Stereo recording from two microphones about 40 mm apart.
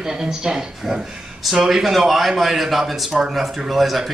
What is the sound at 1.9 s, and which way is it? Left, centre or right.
Speech, centre.